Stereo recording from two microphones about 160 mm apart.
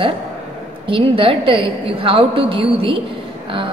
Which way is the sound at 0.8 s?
35° right (ahead or behind).